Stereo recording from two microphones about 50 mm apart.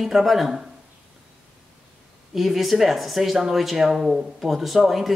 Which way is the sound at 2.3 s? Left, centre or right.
Centre.